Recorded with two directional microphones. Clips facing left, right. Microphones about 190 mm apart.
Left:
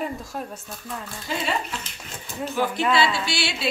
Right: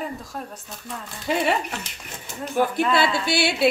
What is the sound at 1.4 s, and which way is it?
Speech, 65° right (ahead or behind).